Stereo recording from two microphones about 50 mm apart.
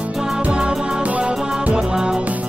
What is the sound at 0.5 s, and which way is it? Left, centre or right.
Music, centre.